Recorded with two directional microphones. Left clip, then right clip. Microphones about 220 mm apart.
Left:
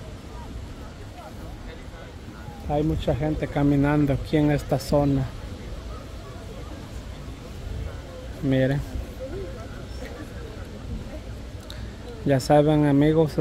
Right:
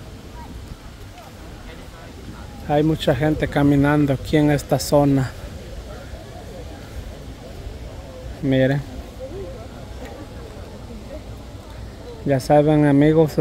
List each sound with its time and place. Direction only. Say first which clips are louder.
2.7 s speech: right 7 dB; 30° right (ahead or behind)
8.5 s speech: right 5 dB; 15° right (ahead or behind)
12.3 s speech: right 3 dB; 5° right (ahead or behind)